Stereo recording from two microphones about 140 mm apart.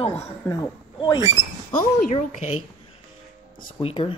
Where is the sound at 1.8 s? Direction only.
65° left (ahead or behind).